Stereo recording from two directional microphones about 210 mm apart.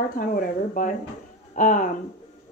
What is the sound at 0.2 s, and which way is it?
A woman's voice, 40° left (ahead or behind).